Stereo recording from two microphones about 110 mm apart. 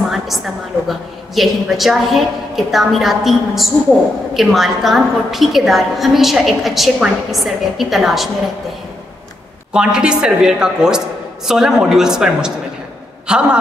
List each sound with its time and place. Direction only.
0.8 s a woman's voice: centre (ahead or behind)
9.7 s a woman's voice: 10° right (ahead or behind)